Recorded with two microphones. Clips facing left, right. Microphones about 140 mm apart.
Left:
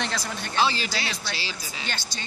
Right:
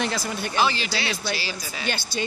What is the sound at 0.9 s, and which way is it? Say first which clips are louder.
Speech: right 3 dB; 40° left (ahead or behind).